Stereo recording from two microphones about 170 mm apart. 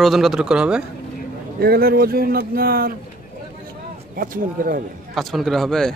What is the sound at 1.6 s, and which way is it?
Speech, 65° right (ahead or behind).